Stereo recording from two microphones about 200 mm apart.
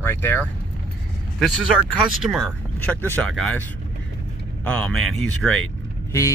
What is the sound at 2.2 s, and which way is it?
Speech, centre (ahead or behind).